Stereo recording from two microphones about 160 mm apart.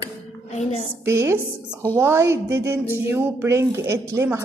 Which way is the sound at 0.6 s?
45° left (ahead or behind).